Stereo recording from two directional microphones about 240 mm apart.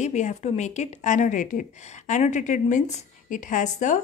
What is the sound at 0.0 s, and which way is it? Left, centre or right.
A woman's voice, left.